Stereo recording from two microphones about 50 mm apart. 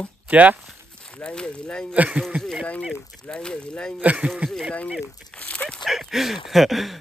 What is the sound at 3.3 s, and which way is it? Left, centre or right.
Speech, centre.